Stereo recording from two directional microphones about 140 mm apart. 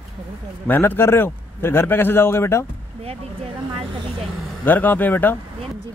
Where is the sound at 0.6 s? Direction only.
15° left (ahead or behind).